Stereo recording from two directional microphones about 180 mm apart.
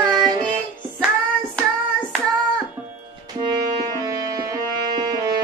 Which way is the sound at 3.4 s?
25° right (ahead or behind).